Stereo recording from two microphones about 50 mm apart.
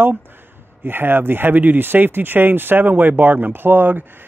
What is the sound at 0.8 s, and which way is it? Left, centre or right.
Speech, right.